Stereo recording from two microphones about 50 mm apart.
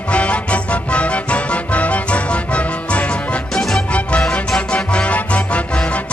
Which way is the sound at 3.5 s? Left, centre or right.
Centre.